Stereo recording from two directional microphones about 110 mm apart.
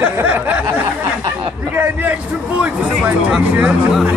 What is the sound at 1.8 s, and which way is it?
Speech, 15° right (ahead or behind).